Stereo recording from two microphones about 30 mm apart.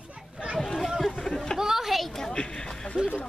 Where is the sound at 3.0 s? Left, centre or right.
Right.